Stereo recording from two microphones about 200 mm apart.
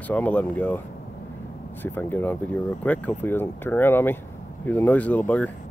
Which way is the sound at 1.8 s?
10° left (ahead or behind).